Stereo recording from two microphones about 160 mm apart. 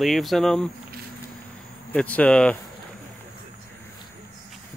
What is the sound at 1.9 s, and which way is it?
Speech, 10° left (ahead or behind).